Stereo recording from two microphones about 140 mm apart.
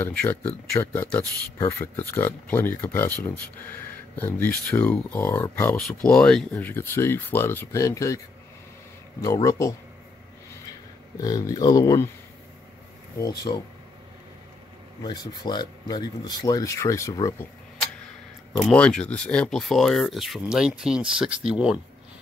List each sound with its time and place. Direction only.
0.0 s speech: 15° left (ahead or behind)
5.8 s speech: 5° left (ahead or behind); by 8.2 s 20° left (ahead or behind)
9.2 s speech: 25° left (ahead or behind)
11.1 s speech: 25° left (ahead or behind)
13.2 s speech: 30° left (ahead or behind)
15.0 s speech: 30° left (ahead or behind)
18.7 s speech: 5° left (ahead or behind)